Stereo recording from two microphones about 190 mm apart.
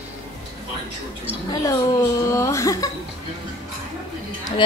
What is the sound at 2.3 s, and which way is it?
Speech, 15° left (ahead or behind).